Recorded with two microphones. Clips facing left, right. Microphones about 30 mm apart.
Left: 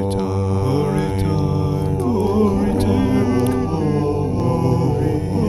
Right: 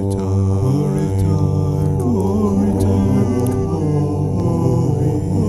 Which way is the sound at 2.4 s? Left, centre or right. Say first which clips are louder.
Even; left.